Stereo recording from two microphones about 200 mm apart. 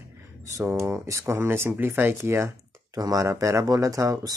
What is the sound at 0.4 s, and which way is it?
Speech, 15° right (ahead or behind).